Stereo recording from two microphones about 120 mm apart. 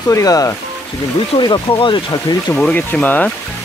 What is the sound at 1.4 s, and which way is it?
Speech, 40° left (ahead or behind).